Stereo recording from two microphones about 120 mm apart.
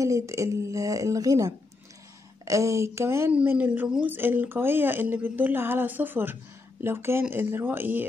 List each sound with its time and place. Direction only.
0.0 s a woman's voice: 25° right (ahead or behind)
3.3 s speech: 10° right (ahead or behind)